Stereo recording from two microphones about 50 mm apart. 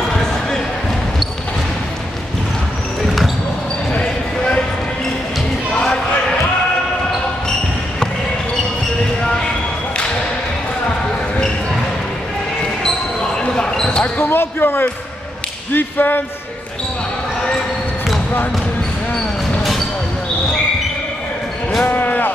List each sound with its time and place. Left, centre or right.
3.9 s basketball bounce: left
12.8 s basketball bounce: centre
14.3 s basketball bounce: left
15.7 s whip: left
21.8 s a sound: left